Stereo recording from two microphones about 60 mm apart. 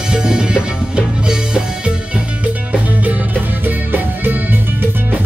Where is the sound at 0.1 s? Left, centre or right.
Centre.